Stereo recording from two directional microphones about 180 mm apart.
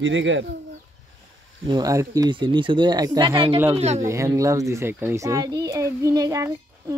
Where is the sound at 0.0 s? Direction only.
90° right.